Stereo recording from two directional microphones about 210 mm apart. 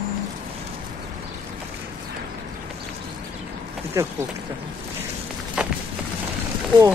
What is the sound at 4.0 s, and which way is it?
Speech, 15° right (ahead or behind).